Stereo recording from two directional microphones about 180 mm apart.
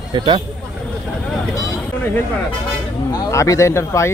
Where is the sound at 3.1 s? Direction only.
20° left (ahead or behind).